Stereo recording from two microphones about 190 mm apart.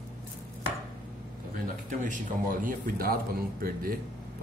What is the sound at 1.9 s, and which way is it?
Speech, 45° right (ahead or behind).